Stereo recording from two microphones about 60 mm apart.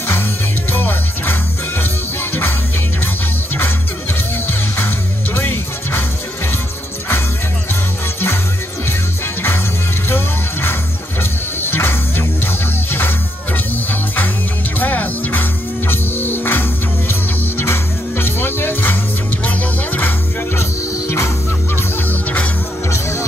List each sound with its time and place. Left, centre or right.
0.7 s music: left
4.5 s music: left
10.0 s music: left
14.8 s music: left